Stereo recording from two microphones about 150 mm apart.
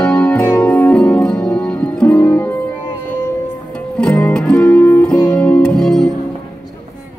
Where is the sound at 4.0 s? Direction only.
5° left (ahead or behind).